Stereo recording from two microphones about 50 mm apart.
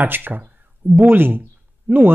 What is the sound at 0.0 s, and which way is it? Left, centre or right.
Speech, right.